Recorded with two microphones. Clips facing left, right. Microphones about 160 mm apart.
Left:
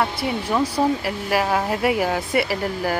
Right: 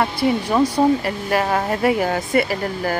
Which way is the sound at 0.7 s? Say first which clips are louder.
Right 4 dB; 5° left (ahead or behind).